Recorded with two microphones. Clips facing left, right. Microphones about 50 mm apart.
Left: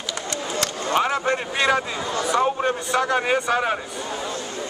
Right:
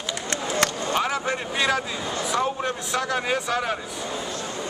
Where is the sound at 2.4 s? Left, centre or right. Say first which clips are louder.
Left 4 dB; centre.